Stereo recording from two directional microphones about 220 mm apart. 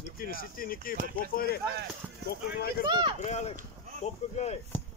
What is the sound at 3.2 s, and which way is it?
Speech, 30° left (ahead or behind).